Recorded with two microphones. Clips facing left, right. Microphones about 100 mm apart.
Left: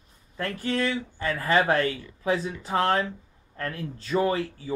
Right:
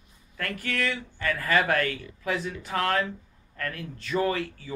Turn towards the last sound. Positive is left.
turn(degrees=30)  # may be behind; listen again after turning